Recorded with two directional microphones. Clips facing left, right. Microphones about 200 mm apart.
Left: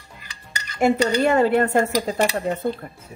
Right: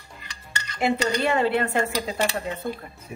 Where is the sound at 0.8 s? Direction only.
45° left (ahead or behind).